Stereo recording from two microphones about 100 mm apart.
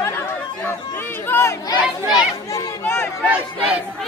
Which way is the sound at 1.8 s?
Centre (ahead or behind).